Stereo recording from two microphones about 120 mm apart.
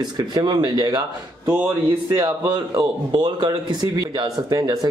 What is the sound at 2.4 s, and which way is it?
Speech, 35° right (ahead or behind).